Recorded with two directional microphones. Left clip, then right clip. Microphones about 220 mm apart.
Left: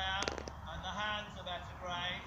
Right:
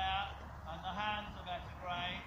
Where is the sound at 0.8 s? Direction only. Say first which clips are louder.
Even; 20° left (ahead or behind).